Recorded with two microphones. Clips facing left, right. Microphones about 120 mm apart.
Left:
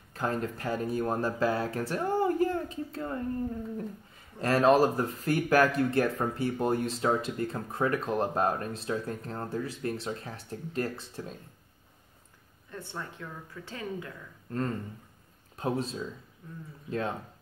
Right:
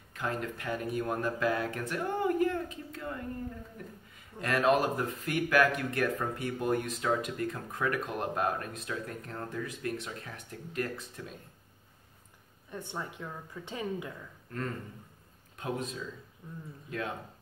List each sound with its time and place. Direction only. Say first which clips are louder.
0.1 s speech: left 4 dB; 35° left (ahead or behind)
4.4 s speech: left 4 dB; 35° left (ahead or behind)
12.7 s speech: right 1 dB; 15° right (ahead or behind)
15.5 s speech: left 4 dB; 30° left (ahead or behind)